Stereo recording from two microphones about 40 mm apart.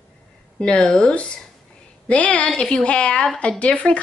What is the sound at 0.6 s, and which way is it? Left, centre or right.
A woman's voice, left.